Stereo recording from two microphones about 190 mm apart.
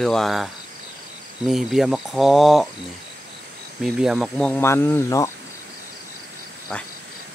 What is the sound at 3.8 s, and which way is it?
Speech, centre (ahead or behind).